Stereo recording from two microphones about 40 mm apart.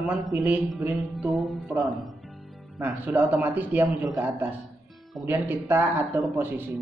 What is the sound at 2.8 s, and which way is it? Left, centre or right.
Speech, right.